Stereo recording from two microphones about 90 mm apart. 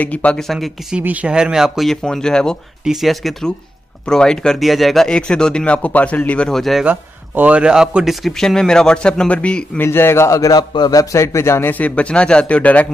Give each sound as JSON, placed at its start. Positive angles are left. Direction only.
{"t": 0.0, "sound": "speech", "side_deg": 15}
{"t": 0.9, "sound": "speech", "side_deg": -10}
{"t": 2.8, "sound": "speech", "side_deg": -5}
{"t": 6.5, "sound": "speech", "side_deg": 0}
{"t": 6.8, "sound": "speech", "side_deg": -15}
{"t": 9.8, "sound": "speech", "side_deg": 30}
{"t": 11.8, "sound": "speech", "side_deg": 15}